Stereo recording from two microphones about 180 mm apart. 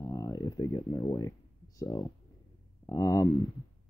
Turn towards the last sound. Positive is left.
turn(degrees=20)  # may be behind; listen again after turning